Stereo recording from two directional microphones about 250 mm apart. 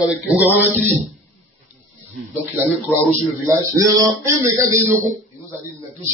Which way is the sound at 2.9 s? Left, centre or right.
Centre.